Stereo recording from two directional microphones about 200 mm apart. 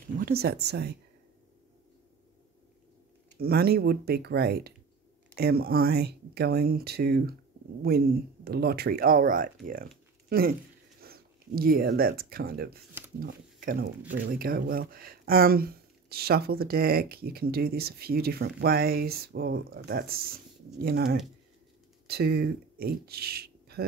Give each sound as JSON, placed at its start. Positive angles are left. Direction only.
{"t": 0.2, "sound": "speech", "side_deg": -50}
{"t": 3.3, "sound": "speech", "side_deg": -50}
{"t": 11.0, "sound": "speech", "side_deg": -50}